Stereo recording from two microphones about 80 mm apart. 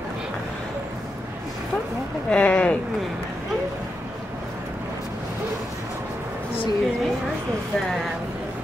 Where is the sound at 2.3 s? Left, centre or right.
Centre.